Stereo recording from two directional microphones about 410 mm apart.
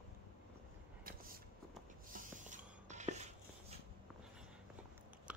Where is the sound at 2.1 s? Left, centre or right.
Centre.